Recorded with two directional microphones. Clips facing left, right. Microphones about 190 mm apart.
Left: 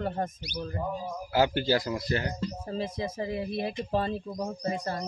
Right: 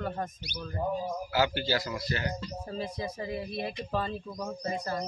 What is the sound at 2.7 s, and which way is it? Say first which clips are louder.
Speech: left 1 dB; 25° left (ahead or behind).